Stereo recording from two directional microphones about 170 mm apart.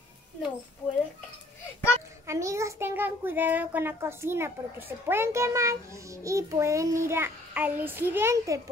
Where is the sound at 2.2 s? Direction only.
15° right (ahead or behind).